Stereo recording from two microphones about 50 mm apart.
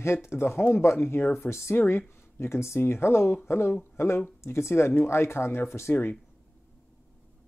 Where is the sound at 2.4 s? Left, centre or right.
Left.